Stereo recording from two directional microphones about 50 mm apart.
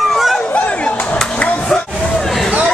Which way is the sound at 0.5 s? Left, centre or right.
Left.